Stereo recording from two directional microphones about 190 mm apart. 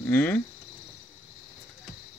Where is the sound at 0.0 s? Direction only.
10° left (ahead or behind).